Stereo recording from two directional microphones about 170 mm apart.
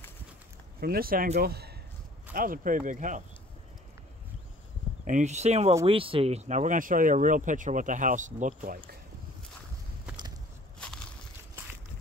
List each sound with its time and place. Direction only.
0.7 s speech: 65° right (ahead or behind)
1.4 s speech: 70° right (ahead or behind)
2.3 s speech: 55° right (ahead or behind)
5.0 s speech: 45° right (ahead or behind)
10.8 s a sound: 5° left (ahead or behind)